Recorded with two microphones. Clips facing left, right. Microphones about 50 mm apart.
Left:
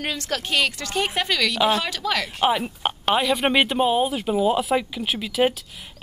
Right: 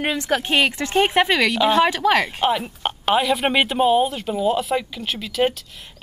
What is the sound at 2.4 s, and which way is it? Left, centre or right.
Speech, centre.